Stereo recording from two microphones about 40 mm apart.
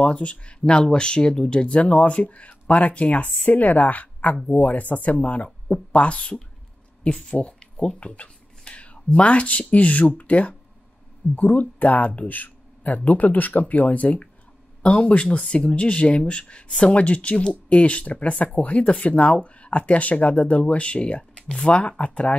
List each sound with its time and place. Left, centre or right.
0.0 s speech: left
1.8 s speech: left
7.3 s speech: left
14.8 s speech: left